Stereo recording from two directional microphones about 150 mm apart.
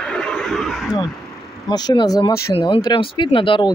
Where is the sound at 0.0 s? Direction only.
5° left (ahead or behind).